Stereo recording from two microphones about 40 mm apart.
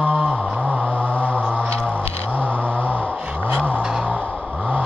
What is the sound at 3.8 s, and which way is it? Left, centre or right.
Gasp, centre.